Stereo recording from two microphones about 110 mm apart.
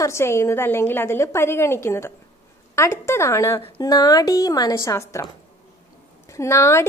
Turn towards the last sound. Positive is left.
turn(degrees=25)  # may be behind; listen again after turning